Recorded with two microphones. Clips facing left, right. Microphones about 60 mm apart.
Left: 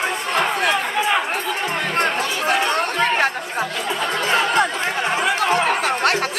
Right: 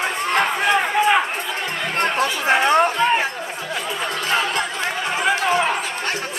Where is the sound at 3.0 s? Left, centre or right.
Left.